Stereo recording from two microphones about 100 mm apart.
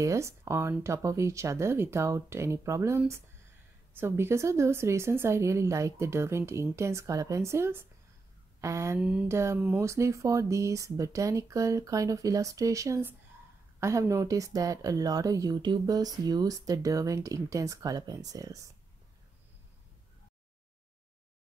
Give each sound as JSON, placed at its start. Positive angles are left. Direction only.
{"t": 0.0, "sound": "speech", "side_deg": -30}
{"t": 9.0, "sound": "speech", "side_deg": -15}
{"t": 9.3, "sound": "speech", "side_deg": -25}